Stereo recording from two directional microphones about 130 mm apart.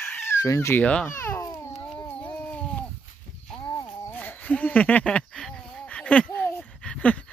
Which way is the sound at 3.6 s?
30° left (ahead or behind).